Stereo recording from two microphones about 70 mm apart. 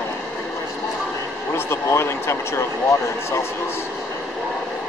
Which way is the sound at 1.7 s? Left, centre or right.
Left.